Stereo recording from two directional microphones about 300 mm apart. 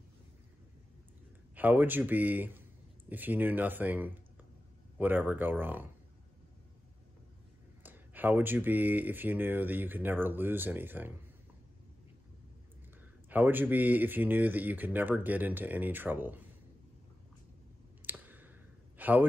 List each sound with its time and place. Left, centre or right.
1.5 s speech: centre
7.8 s speech: centre
13.3 s speech: centre
18.0 s a sound: centre